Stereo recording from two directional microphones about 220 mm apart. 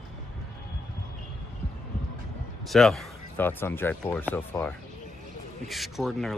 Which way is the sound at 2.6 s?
Centre (ahead or behind).